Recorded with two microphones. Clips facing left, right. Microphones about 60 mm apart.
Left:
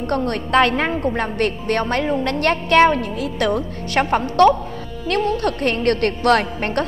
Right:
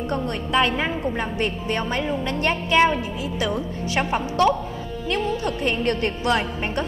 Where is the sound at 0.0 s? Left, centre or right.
Left.